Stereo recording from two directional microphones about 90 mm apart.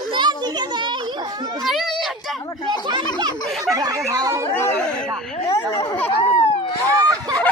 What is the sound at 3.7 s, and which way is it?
Speech, 40° right (ahead or behind).